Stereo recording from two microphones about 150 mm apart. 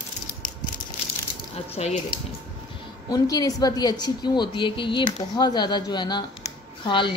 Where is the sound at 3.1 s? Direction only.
25° left (ahead or behind).